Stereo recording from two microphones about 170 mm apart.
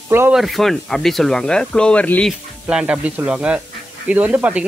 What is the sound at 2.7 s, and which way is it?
Speech, 5° right (ahead or behind).